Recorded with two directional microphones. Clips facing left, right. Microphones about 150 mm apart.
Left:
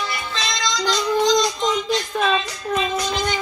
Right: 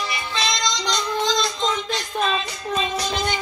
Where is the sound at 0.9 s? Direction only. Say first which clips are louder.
Left 7 dB; 10° left (ahead or behind).